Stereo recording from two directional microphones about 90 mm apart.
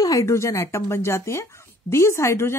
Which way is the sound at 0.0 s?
35° left (ahead or behind).